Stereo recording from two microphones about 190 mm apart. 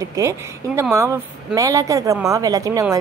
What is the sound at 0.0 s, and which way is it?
A woman's voice, 15° right (ahead or behind).